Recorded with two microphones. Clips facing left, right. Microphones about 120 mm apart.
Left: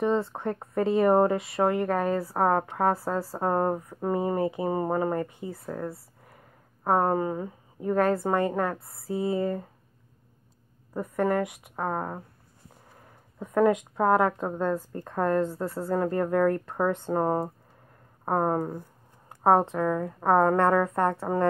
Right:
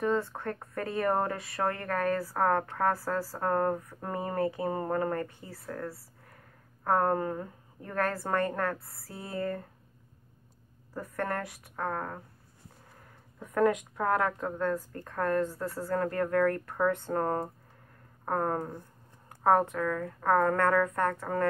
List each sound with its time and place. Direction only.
0.0 s a woman's voice: 25° left (ahead or behind)
10.9 s a woman's voice: 20° left (ahead or behind)
13.4 s a woman's voice: 20° left (ahead or behind)
19.2 s speech: 25° left (ahead or behind)